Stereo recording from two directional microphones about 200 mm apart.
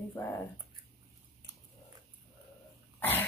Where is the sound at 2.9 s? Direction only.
10° left (ahead or behind).